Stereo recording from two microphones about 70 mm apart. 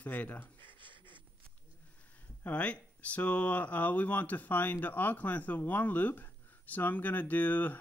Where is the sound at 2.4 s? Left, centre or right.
Left.